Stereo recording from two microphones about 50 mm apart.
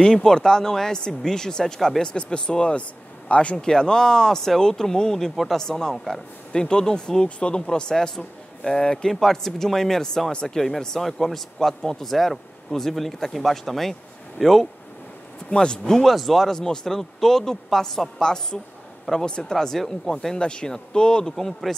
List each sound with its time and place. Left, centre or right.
0.0 s speech: centre
2.1 s speech: centre
3.5 s speech: centre
5.6 s a man's voice: centre
15.5 s speech: centre
15.8 s speech: centre